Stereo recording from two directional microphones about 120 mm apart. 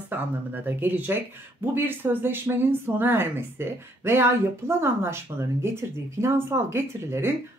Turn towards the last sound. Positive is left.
turn(degrees=-20)  # may be behind; listen again after turning